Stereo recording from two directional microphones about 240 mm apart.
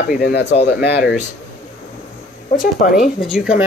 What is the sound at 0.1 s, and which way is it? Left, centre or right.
Speech, left.